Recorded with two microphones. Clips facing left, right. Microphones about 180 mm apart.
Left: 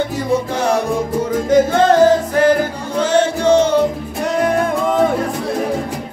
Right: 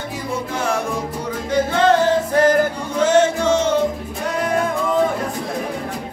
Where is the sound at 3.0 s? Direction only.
35° left (ahead or behind).